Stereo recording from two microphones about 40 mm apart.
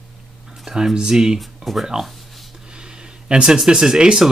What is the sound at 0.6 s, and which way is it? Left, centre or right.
Speech, centre.